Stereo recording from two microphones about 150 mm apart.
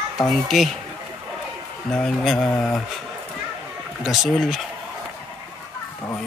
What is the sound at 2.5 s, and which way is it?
Speech, 10° left (ahead or behind).